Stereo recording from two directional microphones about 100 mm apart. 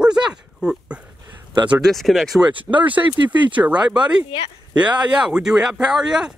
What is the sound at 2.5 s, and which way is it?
Speech, 60° right (ahead or behind).